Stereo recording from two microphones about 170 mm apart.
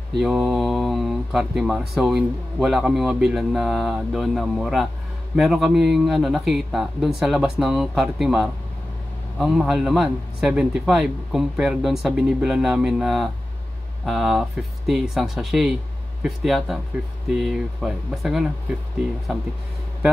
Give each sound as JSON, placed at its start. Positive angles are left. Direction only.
{"t": 0.2, "sound": "speech", "side_deg": 0}